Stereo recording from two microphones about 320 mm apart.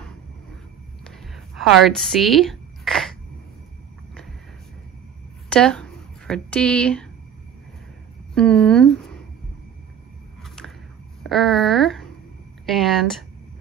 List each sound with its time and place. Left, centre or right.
1.0 s a sound: centre
5.5 s speech: centre
8.4 s speech: centre
10.4 s whip: centre
11.2 s speech: centre